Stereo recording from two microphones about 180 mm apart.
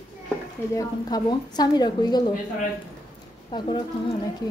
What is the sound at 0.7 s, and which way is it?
A woman's voice, 20° left (ahead or behind).